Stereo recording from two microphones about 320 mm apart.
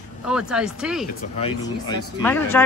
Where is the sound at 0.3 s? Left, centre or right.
Centre.